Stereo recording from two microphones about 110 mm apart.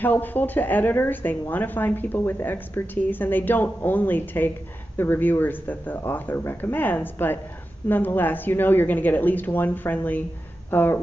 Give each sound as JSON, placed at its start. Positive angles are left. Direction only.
{"t": 0.0, "sound": "speech", "side_deg": 15}